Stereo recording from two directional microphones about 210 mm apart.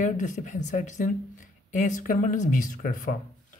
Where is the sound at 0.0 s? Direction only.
35° left (ahead or behind).